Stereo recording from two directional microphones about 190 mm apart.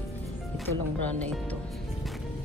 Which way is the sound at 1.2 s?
5° left (ahead or behind).